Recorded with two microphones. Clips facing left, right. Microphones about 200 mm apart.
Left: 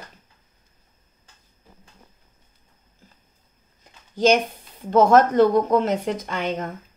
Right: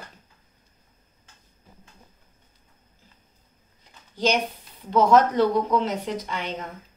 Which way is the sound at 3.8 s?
50° left (ahead or behind).